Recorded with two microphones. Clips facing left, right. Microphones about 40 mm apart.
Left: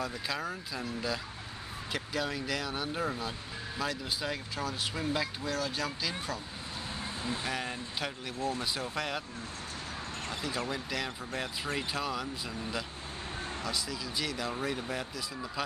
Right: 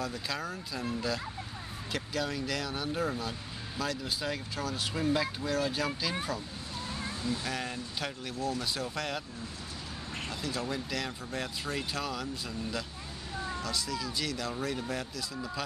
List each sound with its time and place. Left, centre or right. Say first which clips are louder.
0.0 s speech: even; centre
1.9 s speech: even; centre
7.0 s vehicle: right 1 dB; centre
7.5 s speech: even; centre
8.4 s speech: even; left
8.7 s speech: even; centre
10.7 s speech: even; centre
13.6 s speech: even; centre